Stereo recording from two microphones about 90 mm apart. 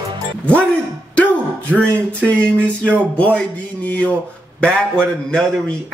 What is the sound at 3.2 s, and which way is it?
Music, 15° left (ahead or behind).